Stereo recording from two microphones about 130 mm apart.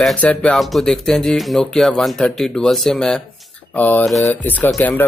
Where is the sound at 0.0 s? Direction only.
10° left (ahead or behind).